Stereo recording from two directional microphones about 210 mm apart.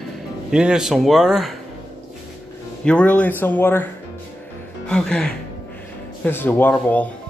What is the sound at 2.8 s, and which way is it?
Speech, 5° left (ahead or behind).